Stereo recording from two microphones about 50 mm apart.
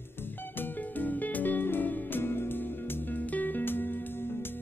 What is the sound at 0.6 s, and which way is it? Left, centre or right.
Music, left.